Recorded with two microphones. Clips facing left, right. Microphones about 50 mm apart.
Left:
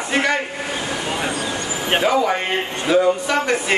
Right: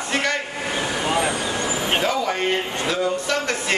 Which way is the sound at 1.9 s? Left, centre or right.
Centre.